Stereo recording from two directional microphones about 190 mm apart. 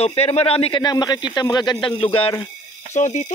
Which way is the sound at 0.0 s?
35° left (ahead or behind).